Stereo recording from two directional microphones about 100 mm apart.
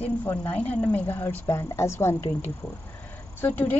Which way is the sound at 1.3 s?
25° left (ahead or behind).